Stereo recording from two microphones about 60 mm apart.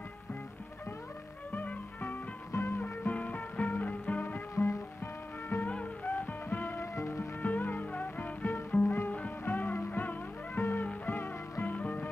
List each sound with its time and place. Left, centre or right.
1.5 s music: left
2.5 s music: left
2.8 s music: left
4.6 s music: left
5.6 s music: left
7.3 s music: left